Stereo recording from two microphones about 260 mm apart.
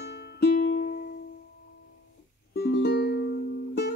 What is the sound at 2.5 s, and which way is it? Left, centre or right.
Music, left.